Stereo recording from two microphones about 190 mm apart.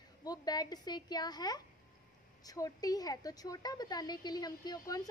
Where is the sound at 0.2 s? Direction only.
20° left (ahead or behind).